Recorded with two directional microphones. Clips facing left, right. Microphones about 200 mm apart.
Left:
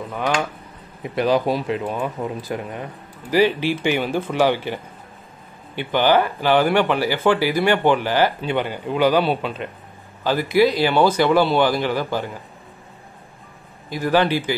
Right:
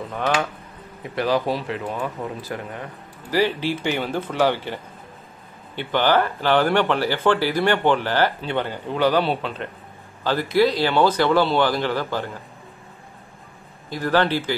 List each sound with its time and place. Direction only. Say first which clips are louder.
1.1 s speech: left 3 dB; 20° left (ahead or behind)
5.8 s speech: left 2 dB; 15° left (ahead or behind)
13.8 s speech: left 2 dB; 10° left (ahead or behind)